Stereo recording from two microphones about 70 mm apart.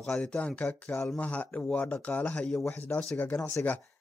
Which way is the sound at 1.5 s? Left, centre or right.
Centre.